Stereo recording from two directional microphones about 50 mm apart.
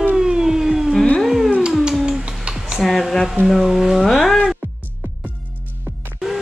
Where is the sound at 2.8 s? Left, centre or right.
Centre.